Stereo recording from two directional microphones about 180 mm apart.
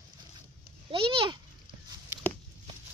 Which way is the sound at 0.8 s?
30° right (ahead or behind).